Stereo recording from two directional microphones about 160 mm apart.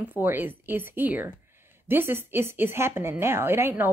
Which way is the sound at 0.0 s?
10° right (ahead or behind).